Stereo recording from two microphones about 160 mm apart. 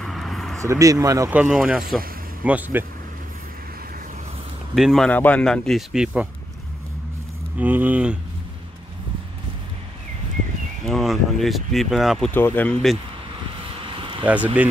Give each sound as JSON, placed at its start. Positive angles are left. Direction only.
{"t": 0.0, "sound": "vehicle", "side_deg": 0}
{"t": 0.6, "sound": "speech", "side_deg": -20}
{"t": 1.3, "sound": "speech", "side_deg": -5}
{"t": 4.7, "sound": "speech", "side_deg": 0}
{"t": 7.5, "sound": "speech", "side_deg": -10}
{"t": 10.9, "sound": "speech", "side_deg": 0}
{"t": 12.4, "sound": "speech", "side_deg": 10}
{"t": 13.9, "sound": "vehicle", "side_deg": -35}
{"t": 14.2, "sound": "speech", "side_deg": -10}